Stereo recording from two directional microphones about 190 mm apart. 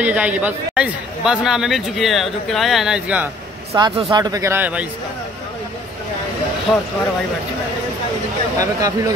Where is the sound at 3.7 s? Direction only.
20° right (ahead or behind).